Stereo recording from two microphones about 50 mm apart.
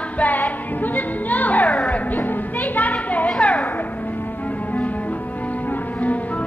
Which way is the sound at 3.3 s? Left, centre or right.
Left.